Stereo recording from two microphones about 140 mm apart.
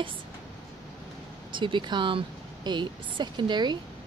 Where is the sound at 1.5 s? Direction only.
35° right (ahead or behind).